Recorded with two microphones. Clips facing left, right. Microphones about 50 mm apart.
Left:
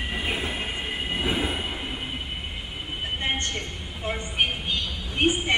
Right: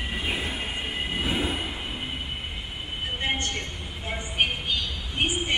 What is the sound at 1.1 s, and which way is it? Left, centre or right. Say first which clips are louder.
Train: left 1 dB; centre.